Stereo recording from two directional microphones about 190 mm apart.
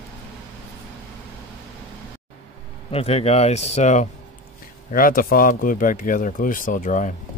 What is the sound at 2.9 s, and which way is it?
Speech, 35° left (ahead or behind).